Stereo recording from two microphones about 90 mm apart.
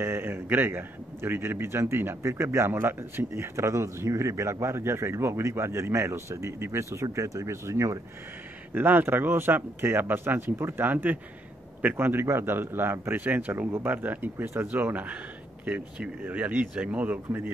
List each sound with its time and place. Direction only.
0.0 s a man's voice: 25° right (ahead or behind)
8.7 s a man's voice: 20° right (ahead or behind)